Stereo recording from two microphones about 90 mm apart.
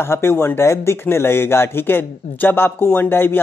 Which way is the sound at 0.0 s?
25° left (ahead or behind).